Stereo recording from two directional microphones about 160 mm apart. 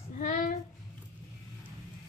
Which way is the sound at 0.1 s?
55° left (ahead or behind).